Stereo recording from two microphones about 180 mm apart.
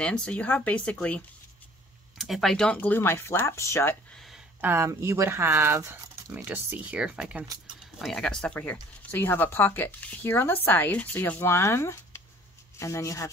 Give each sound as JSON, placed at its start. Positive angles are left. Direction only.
{"t": 0.0, "sound": "speech", "side_deg": 5}
{"t": 4.6, "sound": "speech", "side_deg": -15}